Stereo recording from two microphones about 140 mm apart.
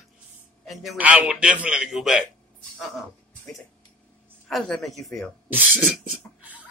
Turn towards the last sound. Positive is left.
turn(degrees=-10)  # may be behind; listen again after turning